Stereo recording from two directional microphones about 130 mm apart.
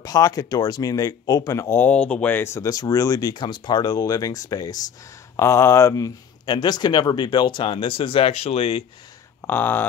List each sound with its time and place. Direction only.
0.0 s speech: 30° left (ahead or behind); by 8.8 s 45° left (ahead or behind)
9.4 s speech: 15° left (ahead or behind)